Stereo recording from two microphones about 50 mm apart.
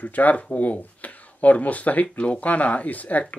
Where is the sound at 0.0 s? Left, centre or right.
Left.